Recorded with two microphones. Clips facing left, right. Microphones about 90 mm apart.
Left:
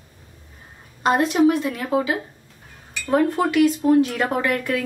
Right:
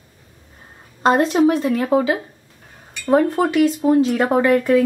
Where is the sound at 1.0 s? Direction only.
30° right (ahead or behind).